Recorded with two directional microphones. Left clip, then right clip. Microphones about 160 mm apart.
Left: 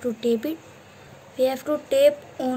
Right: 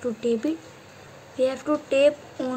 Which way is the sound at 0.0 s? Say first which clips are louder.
Left 1 dB; 15° right (ahead or behind).